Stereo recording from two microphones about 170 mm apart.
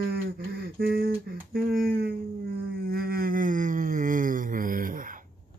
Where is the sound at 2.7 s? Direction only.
60° right (ahead or behind).